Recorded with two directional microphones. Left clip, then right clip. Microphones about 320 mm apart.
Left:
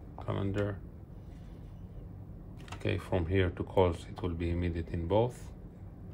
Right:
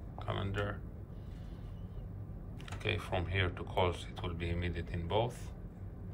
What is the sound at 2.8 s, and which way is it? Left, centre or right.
Speech, left.